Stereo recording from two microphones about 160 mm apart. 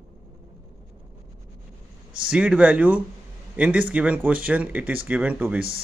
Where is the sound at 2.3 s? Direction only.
5° right (ahead or behind).